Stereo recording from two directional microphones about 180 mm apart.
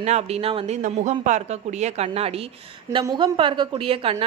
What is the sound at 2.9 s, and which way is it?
A woman's voice, 25° right (ahead or behind).